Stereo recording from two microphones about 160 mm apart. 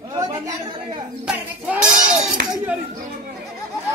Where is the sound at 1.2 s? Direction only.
5° right (ahead or behind).